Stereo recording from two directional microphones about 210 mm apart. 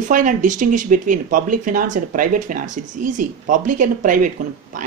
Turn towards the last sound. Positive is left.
turn(degrees=-40)  # may be behind; listen again after turning